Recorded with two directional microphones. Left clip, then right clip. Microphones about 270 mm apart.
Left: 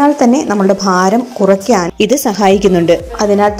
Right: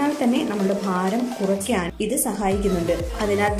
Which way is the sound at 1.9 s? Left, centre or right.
Left.